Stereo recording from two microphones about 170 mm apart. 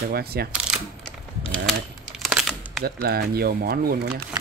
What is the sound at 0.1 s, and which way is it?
Speech, 65° right (ahead or behind).